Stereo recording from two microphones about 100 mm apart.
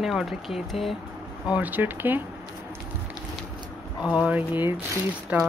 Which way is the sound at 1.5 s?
15° right (ahead or behind).